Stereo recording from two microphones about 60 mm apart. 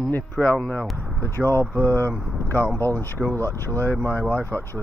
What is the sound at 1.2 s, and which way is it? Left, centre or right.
Speech, left.